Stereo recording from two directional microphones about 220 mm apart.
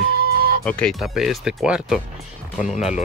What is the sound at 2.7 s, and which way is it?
Speech, 30° left (ahead or behind).